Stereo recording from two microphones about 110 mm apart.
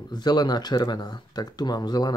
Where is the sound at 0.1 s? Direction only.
40° left (ahead or behind).